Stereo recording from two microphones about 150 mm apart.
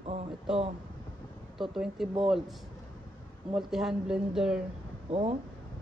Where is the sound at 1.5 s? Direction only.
Centre (ahead or behind).